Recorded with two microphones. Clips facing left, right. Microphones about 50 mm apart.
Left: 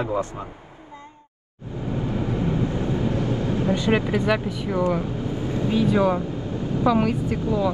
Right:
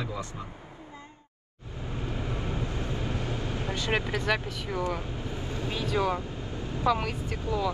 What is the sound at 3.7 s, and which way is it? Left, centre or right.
Speech, centre.